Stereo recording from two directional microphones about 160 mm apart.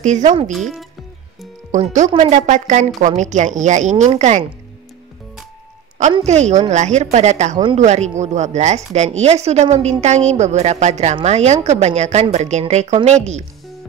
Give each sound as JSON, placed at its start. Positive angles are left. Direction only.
{"t": 0.0, "sound": "a woman's voice", "side_deg": -50}
{"t": 0.5, "sound": "speech", "side_deg": 0}
{"t": 1.7, "sound": "a woman's voice", "side_deg": -50}
{"t": 6.2, "sound": "a woman's voice", "side_deg": -45}